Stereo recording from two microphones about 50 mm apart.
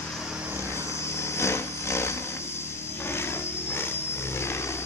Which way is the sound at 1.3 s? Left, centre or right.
Left.